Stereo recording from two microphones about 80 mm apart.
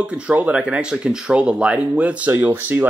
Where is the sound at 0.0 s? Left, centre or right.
Centre.